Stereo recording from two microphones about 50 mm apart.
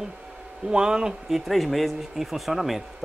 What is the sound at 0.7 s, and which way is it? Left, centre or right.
Speech, centre.